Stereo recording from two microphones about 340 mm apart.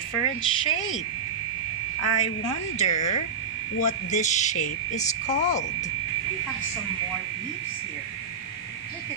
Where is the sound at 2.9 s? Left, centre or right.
Left.